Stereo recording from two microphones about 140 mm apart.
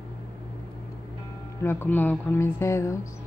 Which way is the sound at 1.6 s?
15° left (ahead or behind).